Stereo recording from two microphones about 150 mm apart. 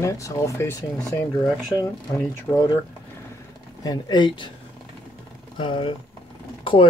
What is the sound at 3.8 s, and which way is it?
Speech, 30° left (ahead or behind).